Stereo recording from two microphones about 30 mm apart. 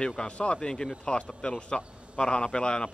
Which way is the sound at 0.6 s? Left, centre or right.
Left.